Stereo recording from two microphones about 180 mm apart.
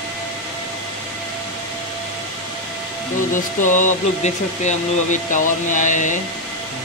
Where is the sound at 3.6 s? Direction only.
45° left (ahead or behind).